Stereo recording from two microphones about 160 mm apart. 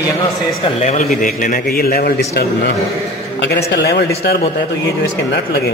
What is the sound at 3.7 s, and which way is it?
Speech, 80° left.